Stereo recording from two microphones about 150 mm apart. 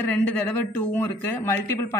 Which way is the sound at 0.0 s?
10° left (ahead or behind).